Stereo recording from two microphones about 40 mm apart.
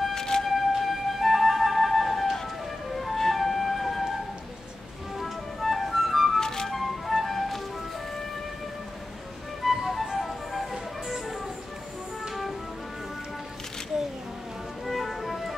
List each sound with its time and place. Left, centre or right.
0.1 s music: centre
0.5 s flute: centre
5.2 s music: centre
6.4 s music: centre
6.7 s music: centre
9.6 s music: centre
14.9 s music: centre